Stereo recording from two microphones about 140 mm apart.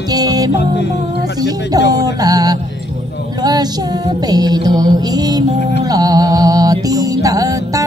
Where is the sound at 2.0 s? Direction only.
25° right (ahead or behind).